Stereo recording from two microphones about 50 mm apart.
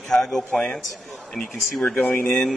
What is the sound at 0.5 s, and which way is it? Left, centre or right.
Speech, left.